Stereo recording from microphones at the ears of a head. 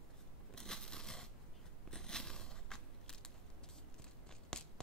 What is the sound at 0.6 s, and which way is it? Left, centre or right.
Scissors, centre.